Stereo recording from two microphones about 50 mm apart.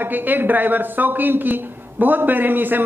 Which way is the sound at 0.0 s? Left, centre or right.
Right.